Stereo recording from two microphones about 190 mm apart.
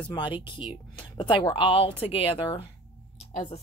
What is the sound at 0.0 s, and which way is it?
Speech, 25° left (ahead or behind).